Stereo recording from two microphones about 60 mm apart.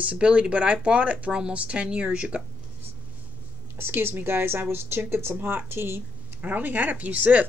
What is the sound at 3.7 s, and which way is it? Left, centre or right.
Speech, right.